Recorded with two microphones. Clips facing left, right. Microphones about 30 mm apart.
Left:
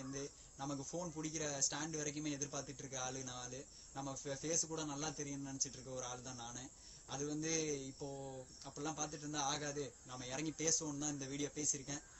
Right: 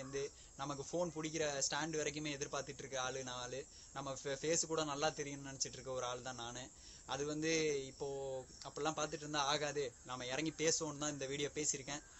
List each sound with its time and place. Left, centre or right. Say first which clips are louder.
0.0 s speech: right 4 dB; right
2.6 s speech: right 3 dB; right
8.0 s speech: right 5 dB; right
8.7 s speech: right 4 dB; right